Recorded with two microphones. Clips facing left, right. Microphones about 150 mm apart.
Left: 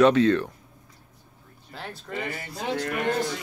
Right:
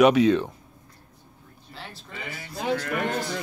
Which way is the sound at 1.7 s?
50° left (ahead or behind).